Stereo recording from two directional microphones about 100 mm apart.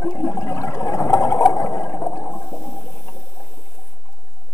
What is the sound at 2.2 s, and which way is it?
Toilet flush, 20° left (ahead or behind).